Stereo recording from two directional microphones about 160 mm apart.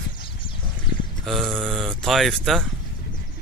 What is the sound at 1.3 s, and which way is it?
Speech, centre (ahead or behind).